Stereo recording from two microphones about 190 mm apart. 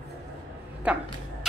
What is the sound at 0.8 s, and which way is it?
Speech, 5° right (ahead or behind).